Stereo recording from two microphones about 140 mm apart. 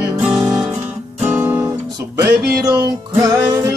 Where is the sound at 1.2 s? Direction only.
10° right (ahead or behind).